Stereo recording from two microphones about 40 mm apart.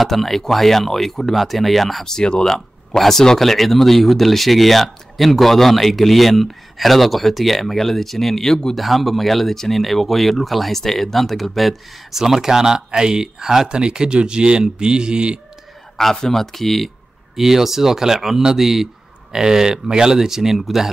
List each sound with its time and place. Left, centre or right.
0.0 s speech: centre
2.0 s speech: centre
8.7 s speech: centre; by 15.4 s right
16.0 s speech: centre
17.4 s speech: centre